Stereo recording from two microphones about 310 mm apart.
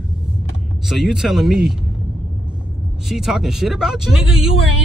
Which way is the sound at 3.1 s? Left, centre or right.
Centre.